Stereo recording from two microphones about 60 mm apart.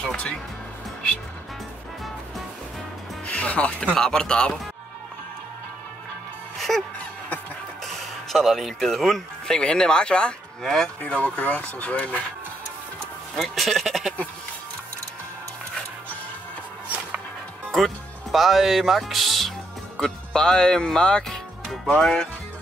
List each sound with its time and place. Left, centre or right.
0.0 s speech: centre
3.3 s speech: left
6.7 s speech: centre
7.8 s a sound: centre
8.7 s speech: centre
13.4 s speech: centre
17.6 s speech: centre
20.0 s speech: centre